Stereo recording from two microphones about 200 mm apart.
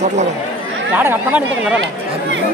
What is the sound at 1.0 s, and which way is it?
Speech, 10° right (ahead or behind).